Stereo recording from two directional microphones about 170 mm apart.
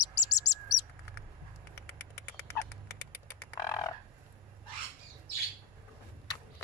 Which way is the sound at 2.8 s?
75° left (ahead or behind).